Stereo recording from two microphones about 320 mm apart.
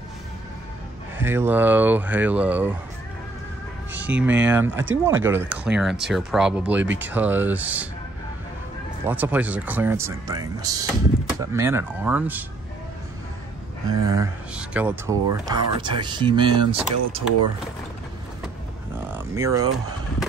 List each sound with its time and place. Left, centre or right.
1.2 s speech: centre
4.0 s speech: centre
6.8 s speech: right
7.1 s speech: centre
9.0 s speech: centre
14.0 s speech: centre
19.1 s speech: centre